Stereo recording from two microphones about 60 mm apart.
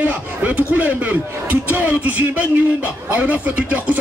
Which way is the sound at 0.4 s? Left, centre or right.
Right.